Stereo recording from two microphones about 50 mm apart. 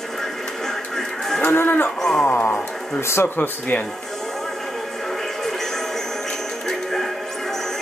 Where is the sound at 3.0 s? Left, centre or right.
Left.